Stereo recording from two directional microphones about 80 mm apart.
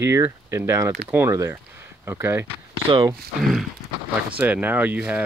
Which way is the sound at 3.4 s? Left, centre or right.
Centre.